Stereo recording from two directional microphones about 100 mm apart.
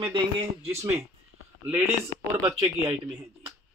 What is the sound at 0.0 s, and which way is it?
Speech, 60° right (ahead or behind).